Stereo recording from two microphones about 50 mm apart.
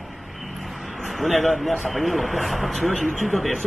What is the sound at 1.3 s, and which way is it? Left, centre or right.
A man's voice, centre.